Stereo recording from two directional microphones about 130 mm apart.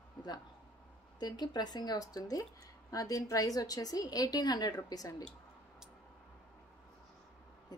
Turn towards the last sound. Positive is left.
turn(degrees=30)  # may be behind; listen again after turning